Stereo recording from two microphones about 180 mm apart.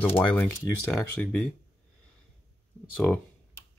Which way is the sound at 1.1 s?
5° left (ahead or behind).